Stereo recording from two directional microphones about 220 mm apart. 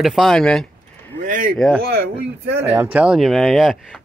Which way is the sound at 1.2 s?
40° right (ahead or behind).